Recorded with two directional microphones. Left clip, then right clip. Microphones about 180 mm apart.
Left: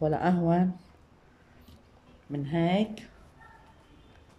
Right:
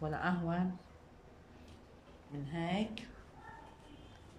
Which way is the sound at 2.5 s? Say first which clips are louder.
Left 11 dB; 45° left (ahead or behind).